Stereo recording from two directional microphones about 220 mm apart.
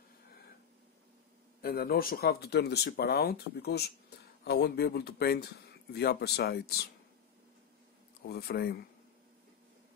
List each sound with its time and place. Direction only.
1.6 s speech: 45° left (ahead or behind)
8.3 s speech: 45° left (ahead or behind)